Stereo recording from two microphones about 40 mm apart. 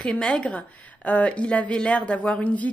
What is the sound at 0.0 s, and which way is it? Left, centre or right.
Speech, centre.